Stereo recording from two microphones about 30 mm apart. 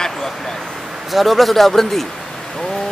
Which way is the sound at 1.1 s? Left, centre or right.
Centre.